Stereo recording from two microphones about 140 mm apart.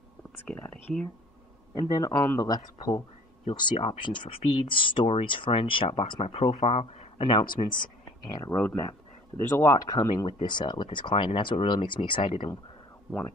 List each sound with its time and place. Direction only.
0.5 s speech: 15° left (ahead or behind)
1.8 s speech: 25° left (ahead or behind)
3.5 s speech: 40° left (ahead or behind)
8.5 s speech: 20° left (ahead or behind); by 12.4 s 40° left (ahead or behind)